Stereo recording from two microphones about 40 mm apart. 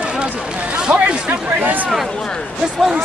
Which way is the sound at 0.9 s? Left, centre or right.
Right.